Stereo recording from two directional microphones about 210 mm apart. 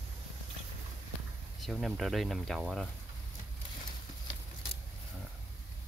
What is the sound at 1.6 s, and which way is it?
Speech, centre (ahead or behind).